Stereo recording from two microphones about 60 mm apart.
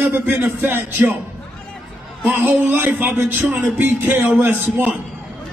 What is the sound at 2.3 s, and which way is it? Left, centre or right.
A man's voice, right.